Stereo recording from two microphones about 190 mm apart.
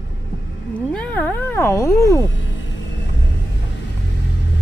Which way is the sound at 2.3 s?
75° left (ahead or behind).